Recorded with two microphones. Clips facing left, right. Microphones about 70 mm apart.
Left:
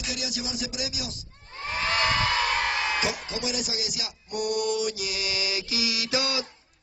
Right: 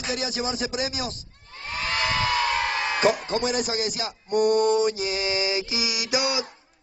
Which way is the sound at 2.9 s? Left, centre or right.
Right.